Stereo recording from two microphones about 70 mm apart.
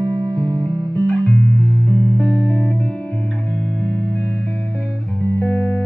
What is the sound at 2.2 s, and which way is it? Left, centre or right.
Music, centre.